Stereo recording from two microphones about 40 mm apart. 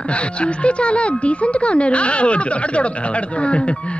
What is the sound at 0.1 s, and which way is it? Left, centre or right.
A woman's voice, left.